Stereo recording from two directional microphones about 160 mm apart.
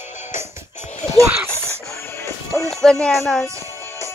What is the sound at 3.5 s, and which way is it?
Music, 20° right (ahead or behind).